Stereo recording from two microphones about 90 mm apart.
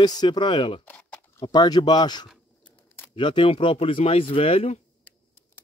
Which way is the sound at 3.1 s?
70° left (ahead or behind).